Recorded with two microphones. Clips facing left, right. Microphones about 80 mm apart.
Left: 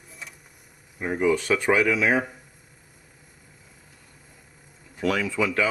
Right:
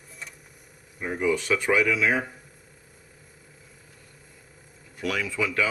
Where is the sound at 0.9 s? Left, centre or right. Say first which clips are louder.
Left 3 dB; centre.